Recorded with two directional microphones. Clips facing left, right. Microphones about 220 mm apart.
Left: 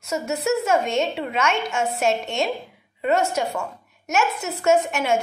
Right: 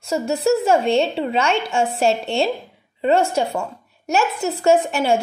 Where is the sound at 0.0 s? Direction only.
30° right (ahead or behind).